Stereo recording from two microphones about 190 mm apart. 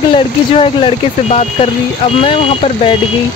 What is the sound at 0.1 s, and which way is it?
Speech, 25° left (ahead or behind).